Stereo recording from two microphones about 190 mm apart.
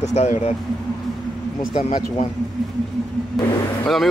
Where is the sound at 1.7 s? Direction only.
35° left (ahead or behind).